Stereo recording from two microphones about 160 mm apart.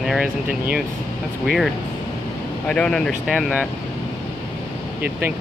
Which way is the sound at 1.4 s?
Centre (ahead or behind).